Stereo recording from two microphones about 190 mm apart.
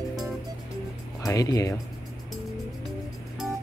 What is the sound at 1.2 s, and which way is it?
Speech, 20° left (ahead or behind).